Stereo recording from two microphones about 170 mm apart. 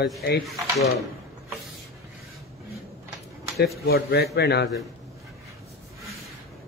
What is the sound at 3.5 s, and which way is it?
Speech, 65° left (ahead or behind).